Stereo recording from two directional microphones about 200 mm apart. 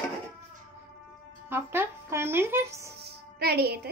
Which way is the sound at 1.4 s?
10° right (ahead or behind).